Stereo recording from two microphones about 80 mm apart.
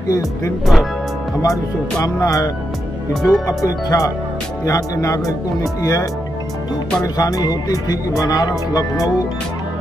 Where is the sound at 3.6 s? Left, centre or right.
Left.